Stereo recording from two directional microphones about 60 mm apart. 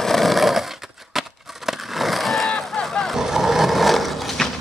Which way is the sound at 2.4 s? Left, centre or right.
Centre.